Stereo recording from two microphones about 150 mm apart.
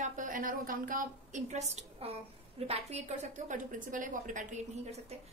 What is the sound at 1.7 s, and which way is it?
A woman's voice, 40° right (ahead or behind).